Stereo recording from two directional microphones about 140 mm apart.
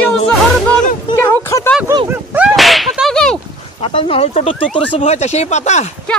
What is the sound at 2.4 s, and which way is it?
Whip, centre (ahead or behind).